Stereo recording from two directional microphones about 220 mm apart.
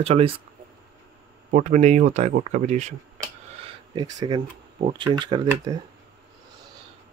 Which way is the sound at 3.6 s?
20° right (ahead or behind).